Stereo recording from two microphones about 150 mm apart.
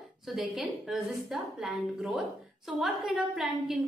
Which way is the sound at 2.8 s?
Centre (ahead or behind).